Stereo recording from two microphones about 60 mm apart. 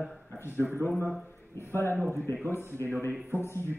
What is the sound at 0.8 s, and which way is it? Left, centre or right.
Speech, left.